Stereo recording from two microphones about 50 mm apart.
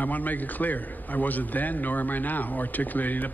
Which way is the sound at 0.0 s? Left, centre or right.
Left.